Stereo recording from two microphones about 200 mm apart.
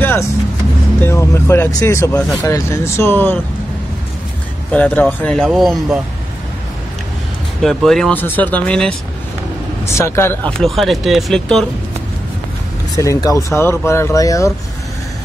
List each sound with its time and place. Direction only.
0.0 s vehicle: 10° left (ahead or behind)
1.0 s speech: 15° left (ahead or behind)
4.7 s speech: 10° left (ahead or behind)
7.6 s speech: centre (ahead or behind)
12.9 s speech: 15° left (ahead or behind)